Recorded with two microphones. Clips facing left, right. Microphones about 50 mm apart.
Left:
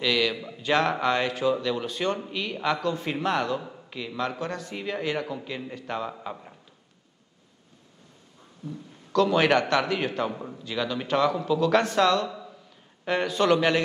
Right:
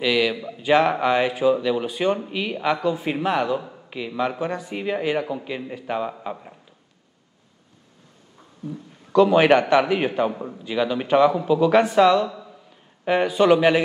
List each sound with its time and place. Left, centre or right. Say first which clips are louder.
0.0 s speech: right 4 dB; centre
8.6 s speech: right 4 dB; centre